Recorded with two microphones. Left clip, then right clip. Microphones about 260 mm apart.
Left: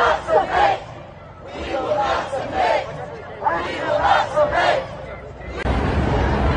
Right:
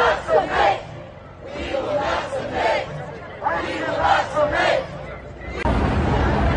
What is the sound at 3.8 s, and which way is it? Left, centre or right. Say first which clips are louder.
Speech: left 2 dB; left.